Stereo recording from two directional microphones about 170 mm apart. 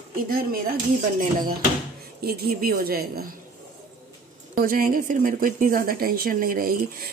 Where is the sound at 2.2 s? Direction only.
65° right (ahead or behind).